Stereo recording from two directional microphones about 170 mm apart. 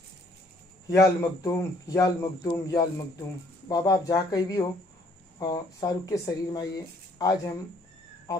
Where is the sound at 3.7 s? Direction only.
20° left (ahead or behind).